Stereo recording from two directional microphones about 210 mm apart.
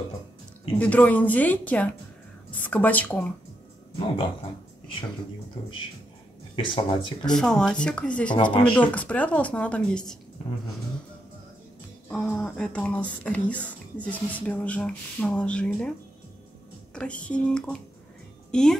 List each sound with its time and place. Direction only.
0.7 s speech: 10° left (ahead or behind)
3.9 s speech: 25° left (ahead or behind)
6.5 s speech: 25° left (ahead or behind)
7.2 s speech: 5° left (ahead or behind)
12.1 s speech: 5° left (ahead or behind)
16.9 s a woman's voice: 5° left (ahead or behind)